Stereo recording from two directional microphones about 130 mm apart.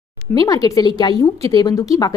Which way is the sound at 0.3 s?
30° left (ahead or behind).